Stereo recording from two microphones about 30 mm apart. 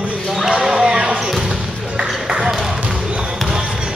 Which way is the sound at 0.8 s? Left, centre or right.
Right.